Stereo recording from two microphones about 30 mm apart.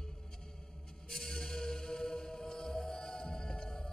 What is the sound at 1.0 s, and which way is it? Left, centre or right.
Music, centre.